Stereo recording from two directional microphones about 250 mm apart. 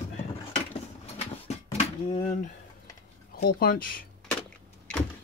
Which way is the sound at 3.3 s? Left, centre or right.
Left.